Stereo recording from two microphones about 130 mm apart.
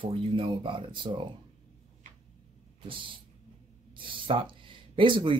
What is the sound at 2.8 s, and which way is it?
Speech, 40° right (ahead or behind).